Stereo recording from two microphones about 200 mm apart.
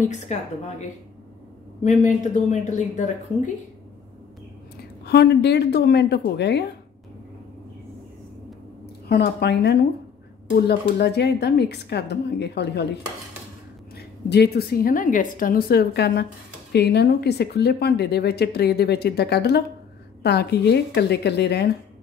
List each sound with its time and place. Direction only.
0.1 s a woman's voice: 35° left (ahead or behind)
5.0 s speech: 55° left (ahead or behind)
9.1 s a woman's voice: 55° left (ahead or behind)